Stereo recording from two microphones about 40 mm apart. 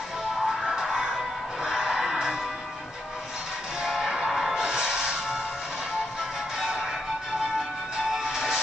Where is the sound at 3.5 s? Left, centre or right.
Centre.